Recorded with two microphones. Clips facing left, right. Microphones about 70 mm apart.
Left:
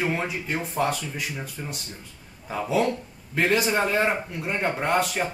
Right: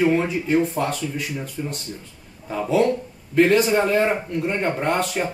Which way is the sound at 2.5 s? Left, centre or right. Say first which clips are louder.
Right 4 dB; centre.